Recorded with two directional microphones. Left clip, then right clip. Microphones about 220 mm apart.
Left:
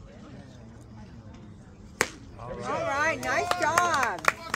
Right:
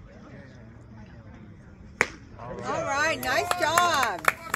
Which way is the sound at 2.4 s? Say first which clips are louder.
Right 1 dB; 40° right (ahead or behind).